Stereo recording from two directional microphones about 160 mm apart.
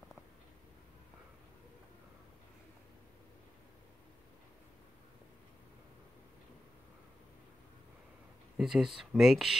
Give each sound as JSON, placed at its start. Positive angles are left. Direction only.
{"t": 8.5, "sound": "speech", "side_deg": -5}